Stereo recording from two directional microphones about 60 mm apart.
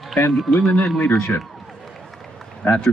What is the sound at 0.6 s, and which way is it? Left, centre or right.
Speech, centre.